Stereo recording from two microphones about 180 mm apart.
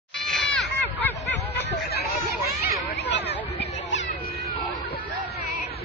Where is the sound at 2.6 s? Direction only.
65° left (ahead or behind).